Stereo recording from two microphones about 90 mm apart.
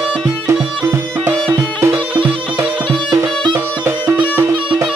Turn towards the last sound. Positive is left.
turn(degrees=-25)  # may be behind; listen again after turning